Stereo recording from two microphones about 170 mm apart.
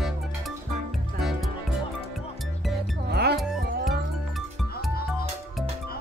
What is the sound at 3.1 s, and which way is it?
Music, 70° right (ahead or behind).